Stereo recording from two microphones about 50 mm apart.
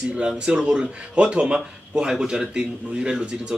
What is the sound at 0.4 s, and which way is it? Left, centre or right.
A man's voice, centre.